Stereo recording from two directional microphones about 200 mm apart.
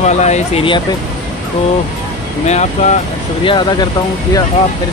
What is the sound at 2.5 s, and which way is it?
Speech, 35° left (ahead or behind).